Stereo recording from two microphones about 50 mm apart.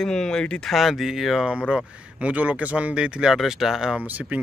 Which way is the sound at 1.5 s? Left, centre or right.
Centre.